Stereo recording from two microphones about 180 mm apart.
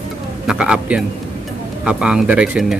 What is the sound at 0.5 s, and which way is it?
Speech, 5° right (ahead or behind).